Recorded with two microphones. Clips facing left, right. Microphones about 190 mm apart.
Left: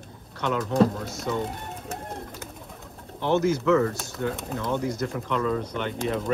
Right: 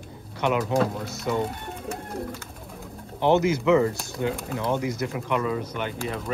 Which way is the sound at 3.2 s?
15° right (ahead or behind).